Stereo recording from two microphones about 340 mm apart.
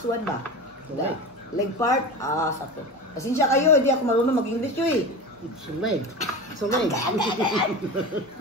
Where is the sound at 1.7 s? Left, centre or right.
Centre.